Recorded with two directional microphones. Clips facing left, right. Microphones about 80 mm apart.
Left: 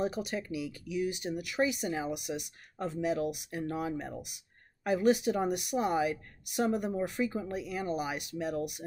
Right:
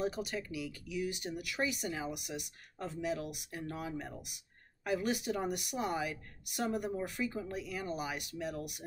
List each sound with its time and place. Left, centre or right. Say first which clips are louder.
0.0 s a woman's voice: left 3 dB; centre